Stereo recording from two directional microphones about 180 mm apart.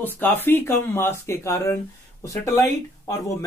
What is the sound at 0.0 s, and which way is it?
Speech, 10° left (ahead or behind).